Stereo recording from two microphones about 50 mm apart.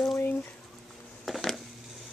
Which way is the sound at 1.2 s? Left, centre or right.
Centre.